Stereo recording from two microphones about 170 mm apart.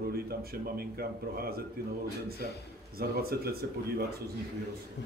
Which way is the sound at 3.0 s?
65° right (ahead or behind).